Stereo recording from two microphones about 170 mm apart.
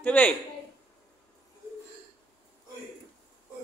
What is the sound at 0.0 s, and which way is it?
Speech, 10° left (ahead or behind).